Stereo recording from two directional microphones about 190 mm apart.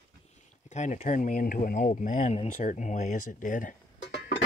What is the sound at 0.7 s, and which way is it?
Speech, 40° left (ahead or behind).